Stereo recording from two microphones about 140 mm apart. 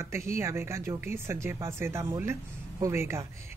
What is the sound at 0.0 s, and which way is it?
A woman's voice, 20° right (ahead or behind).